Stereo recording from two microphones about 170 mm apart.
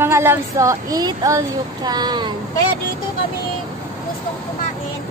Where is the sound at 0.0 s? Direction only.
15° right (ahead or behind).